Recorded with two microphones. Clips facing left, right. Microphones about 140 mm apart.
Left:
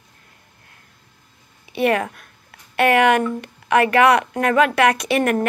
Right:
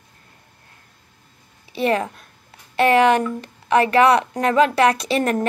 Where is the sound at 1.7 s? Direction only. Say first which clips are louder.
Left 1 dB; 30° right (ahead or behind).